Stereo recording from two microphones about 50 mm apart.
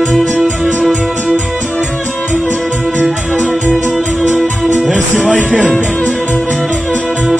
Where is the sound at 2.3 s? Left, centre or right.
Left.